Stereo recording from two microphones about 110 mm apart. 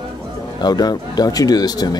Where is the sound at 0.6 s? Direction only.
40° left (ahead or behind).